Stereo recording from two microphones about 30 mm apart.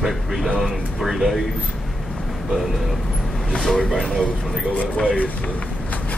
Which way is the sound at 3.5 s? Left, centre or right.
Centre.